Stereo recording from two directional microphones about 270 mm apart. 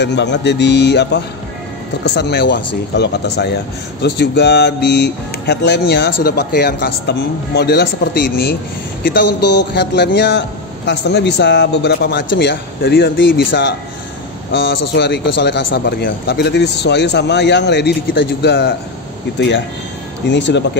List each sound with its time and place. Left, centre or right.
0.0 s speech: left
9.0 s speech: left
9.4 s a sound: left
9.8 s speech: left